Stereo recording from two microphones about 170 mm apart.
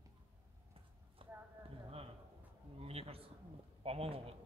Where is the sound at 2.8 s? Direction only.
35° right (ahead or behind).